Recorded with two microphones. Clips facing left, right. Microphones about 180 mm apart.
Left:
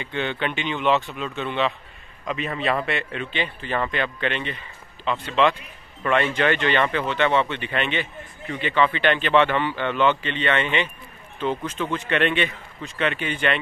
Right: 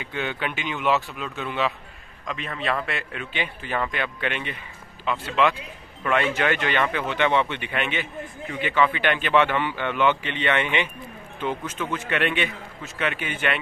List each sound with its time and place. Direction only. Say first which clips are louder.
0.0 s speech: left 3 dB; 5° right (ahead or behind)